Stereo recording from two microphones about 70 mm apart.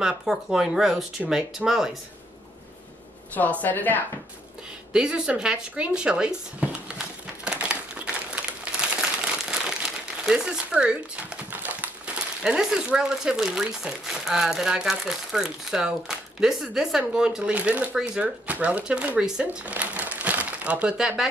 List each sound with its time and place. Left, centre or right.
0.0 s speech: centre
3.6 s speech: left
4.9 s speech: centre
7.6 s a sound: centre
8.9 s crumpling: centre
11.5 s a sound: right
12.2 s speech: centre
17.9 s speech: centre
19.6 s crumpling: right